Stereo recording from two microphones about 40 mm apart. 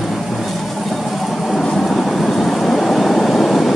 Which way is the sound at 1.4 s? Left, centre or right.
Centre.